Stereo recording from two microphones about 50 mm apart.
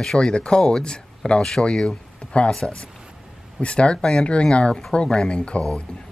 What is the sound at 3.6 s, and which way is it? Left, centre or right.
Speech, left.